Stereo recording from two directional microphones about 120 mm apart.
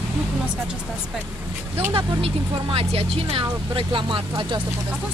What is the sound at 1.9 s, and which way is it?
Speech, 50° right (ahead or behind).